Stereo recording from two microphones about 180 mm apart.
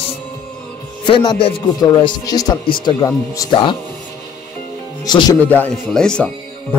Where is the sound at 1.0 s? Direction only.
25° left (ahead or behind).